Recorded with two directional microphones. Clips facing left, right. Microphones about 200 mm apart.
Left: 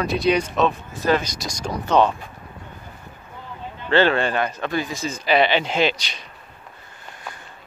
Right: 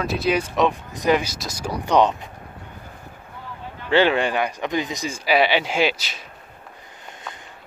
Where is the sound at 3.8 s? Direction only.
15° right (ahead or behind).